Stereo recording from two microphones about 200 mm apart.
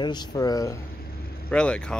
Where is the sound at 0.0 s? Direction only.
20° left (ahead or behind).